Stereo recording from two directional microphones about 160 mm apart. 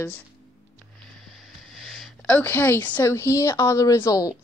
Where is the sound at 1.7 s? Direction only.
Centre (ahead or behind).